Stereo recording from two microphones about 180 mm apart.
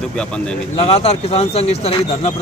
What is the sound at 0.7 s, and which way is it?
Speech, 35° left (ahead or behind).